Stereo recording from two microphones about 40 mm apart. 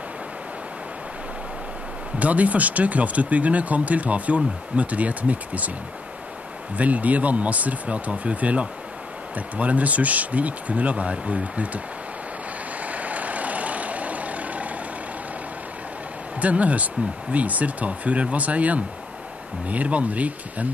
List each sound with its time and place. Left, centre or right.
2.1 s speech: right
6.8 s speech: right
12.8 s vehicle: right
16.3 s speech: right